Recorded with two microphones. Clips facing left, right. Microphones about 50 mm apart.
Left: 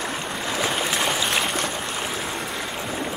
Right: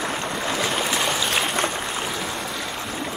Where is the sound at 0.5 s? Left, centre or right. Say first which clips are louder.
Left 1 dB; centre.